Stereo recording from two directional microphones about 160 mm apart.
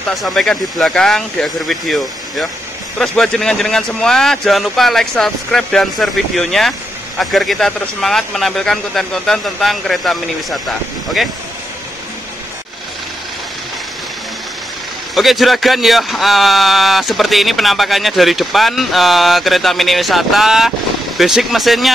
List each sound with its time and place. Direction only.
0.1 s a man's voice: centre (ahead or behind)
15.1 s a man's voice: centre (ahead or behind)